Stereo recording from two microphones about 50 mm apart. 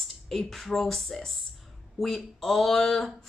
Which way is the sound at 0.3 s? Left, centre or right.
Centre.